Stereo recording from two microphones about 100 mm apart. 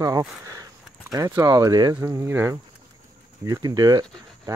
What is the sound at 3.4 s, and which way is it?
Speech, 40° right (ahead or behind).